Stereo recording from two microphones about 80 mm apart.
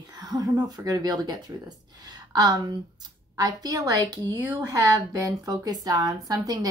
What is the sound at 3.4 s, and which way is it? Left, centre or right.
A woman's voice, right.